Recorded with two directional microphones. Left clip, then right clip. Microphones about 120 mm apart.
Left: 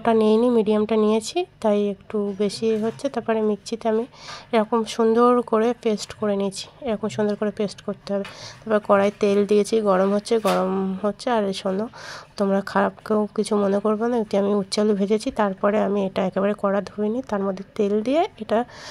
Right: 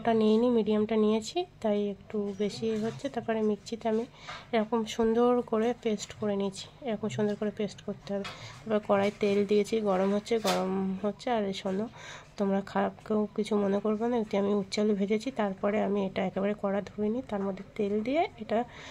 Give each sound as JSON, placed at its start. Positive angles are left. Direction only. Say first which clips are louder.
{"t": 0.0, "sound": "a woman's voice", "louder": "left 8 dB", "side_deg": 35}
{"t": 11.2, "sound": "speech", "louder": "left 8 dB", "side_deg": 30}